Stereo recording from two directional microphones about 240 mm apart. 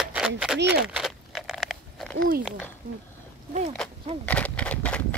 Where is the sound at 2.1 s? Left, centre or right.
Right.